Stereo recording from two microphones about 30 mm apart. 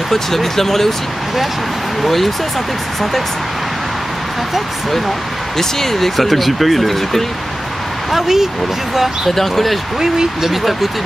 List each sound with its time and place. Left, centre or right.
0.1 s speech: centre
5.6 s speech: centre
6.2 s speech: centre
8.1 s speech: centre
9.3 s speech: centre
9.9 s speech: centre
10.5 s speech: centre